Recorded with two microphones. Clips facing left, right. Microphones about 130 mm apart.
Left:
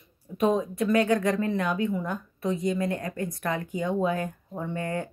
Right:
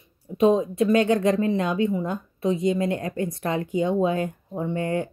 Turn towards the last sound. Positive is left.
turn(degrees=-20)  # may be behind; listen again after turning